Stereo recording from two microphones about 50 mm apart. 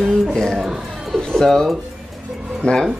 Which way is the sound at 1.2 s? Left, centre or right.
Centre.